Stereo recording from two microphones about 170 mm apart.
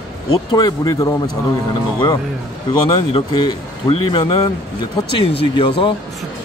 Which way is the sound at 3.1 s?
25° left (ahead or behind).